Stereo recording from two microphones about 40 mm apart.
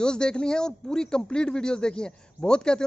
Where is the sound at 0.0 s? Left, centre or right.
Centre.